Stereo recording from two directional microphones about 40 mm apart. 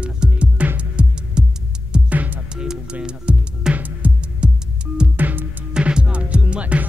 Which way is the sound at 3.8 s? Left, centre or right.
Right.